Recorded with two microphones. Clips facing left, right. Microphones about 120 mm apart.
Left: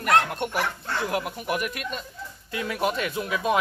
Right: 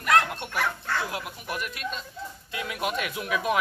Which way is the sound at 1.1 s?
55° left (ahead or behind).